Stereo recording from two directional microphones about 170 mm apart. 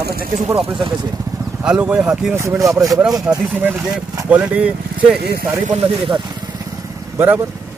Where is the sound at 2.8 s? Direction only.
20° right (ahead or behind).